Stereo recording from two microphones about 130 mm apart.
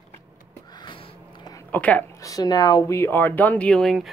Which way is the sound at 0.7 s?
35° left (ahead or behind).